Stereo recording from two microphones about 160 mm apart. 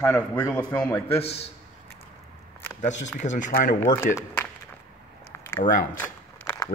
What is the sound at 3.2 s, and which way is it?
Speech, 50° left (ahead or behind).